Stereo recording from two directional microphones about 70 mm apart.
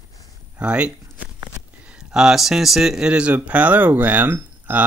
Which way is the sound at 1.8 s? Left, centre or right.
Centre.